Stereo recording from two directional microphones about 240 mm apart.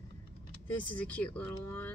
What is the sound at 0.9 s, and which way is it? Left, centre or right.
Speech, centre.